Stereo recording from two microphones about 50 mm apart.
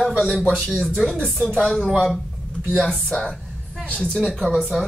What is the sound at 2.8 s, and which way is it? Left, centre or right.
Speech, centre.